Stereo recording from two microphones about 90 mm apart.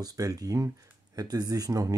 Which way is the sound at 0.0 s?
45° right (ahead or behind).